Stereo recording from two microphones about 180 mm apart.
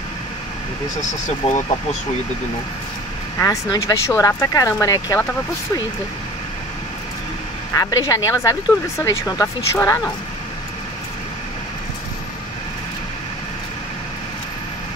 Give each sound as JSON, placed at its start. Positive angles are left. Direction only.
{"t": 1.4, "sound": "speech", "side_deg": 35}
{"t": 3.3, "sound": "speech", "side_deg": 20}
{"t": 7.7, "sound": "speech", "side_deg": 20}